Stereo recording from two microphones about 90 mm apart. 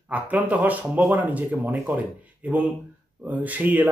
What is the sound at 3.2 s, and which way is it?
Speech, 15° right (ahead or behind).